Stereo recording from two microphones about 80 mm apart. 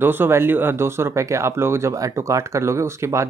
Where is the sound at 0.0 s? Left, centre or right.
Right.